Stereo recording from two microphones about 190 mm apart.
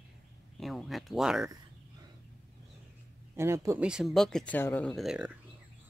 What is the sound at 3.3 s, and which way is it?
Speech, 15° right (ahead or behind).